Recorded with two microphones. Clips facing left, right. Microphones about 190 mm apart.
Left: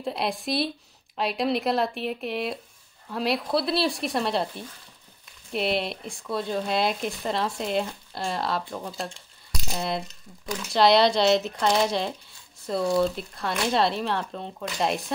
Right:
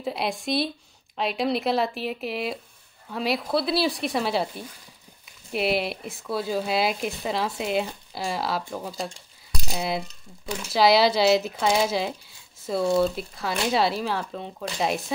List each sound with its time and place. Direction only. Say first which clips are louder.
0.0 s speech: even; centre (ahead or behind)
10.0 s speech: even; 30° right (ahead or behind)
10.7 s speech: even; 5° right (ahead or behind)